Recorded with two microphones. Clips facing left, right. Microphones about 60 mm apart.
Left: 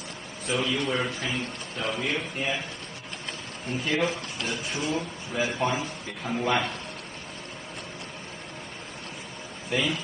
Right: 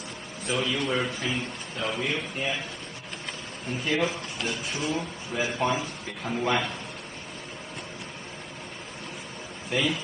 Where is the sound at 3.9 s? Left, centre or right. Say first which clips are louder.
Even; centre.